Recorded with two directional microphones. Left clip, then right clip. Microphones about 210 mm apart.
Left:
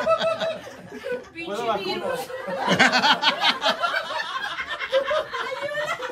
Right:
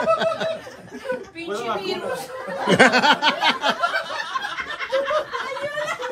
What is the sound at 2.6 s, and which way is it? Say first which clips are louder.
Speech: right 3 dB; centre (ahead or behind).